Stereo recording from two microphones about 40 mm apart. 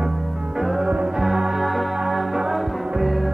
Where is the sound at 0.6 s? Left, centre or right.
Centre.